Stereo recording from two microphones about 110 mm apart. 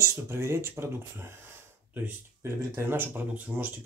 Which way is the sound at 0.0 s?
25° right (ahead or behind).